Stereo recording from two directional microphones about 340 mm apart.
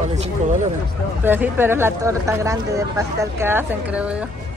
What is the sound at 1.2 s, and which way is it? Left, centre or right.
Speech, centre.